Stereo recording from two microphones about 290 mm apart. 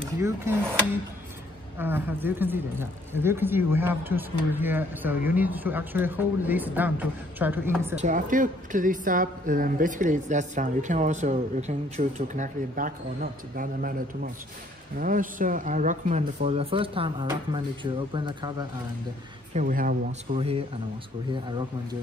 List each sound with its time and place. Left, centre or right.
0.2 s speech: centre
1.8 s speech: centre
7.9 s a woman's voice: right
19.5 s a woman's voice: right